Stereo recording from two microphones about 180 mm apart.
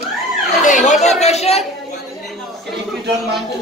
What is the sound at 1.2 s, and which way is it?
Speech, 35° left (ahead or behind).